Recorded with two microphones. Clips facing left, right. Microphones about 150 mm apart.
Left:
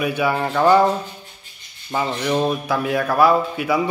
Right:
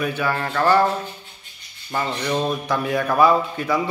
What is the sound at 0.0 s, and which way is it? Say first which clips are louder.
A man's voice: left 3 dB; 10° left (ahead or behind).